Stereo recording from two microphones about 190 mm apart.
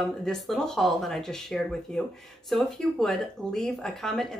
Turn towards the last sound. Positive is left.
turn(degrees=0)  # may be behind; listen again after turning